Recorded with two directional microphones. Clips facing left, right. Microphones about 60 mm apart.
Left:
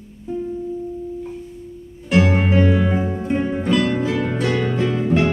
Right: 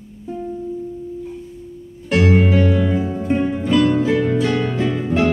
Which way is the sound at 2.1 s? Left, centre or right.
Centre.